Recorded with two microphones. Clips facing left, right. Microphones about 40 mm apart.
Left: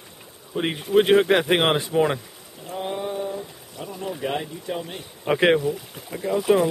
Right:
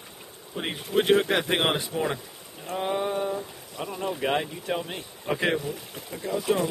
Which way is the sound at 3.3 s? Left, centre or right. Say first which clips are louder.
Even; right.